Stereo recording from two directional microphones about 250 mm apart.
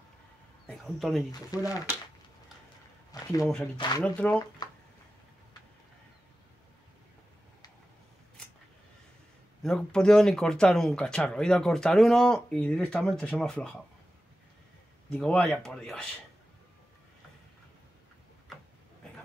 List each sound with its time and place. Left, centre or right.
0.7 s a man's voice: centre
1.3 s speech: centre
3.1 s speech: centre
4.0 s speech: centre
9.6 s speech: centre
15.1 s speech: centre